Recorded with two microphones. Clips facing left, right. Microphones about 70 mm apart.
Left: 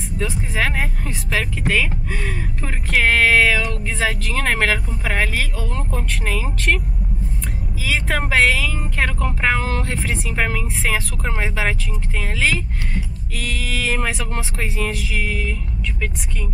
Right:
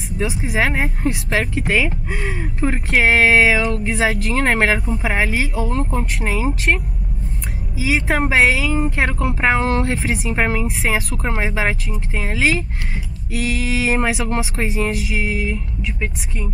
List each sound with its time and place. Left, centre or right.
0.2 s speech: centre
7.8 s speech: centre
10.4 s speech: centre